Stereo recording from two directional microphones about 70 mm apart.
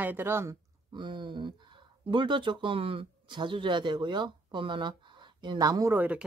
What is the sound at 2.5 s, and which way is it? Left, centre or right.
Speech, right.